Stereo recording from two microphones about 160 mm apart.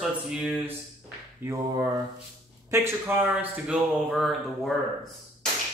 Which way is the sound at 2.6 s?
15° right (ahead or behind).